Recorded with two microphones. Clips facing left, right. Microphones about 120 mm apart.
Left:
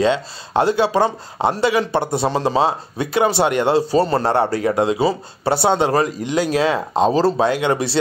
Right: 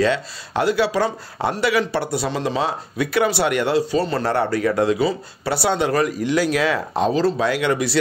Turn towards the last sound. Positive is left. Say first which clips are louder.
# left 2 dB
turn(degrees=30)  # may be behind; listen again after turning